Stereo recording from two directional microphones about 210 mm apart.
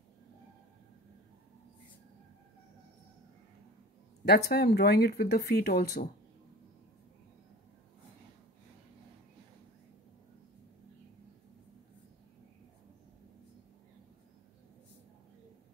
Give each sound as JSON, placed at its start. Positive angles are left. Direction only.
{"t": 4.2, "sound": "speech", "side_deg": 50}